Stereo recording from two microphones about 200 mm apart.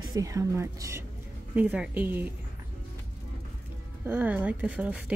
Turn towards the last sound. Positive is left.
turn(degrees=-5)  # may be behind; listen again after turning